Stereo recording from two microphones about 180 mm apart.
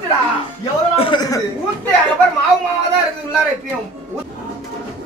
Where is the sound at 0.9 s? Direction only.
30° left (ahead or behind).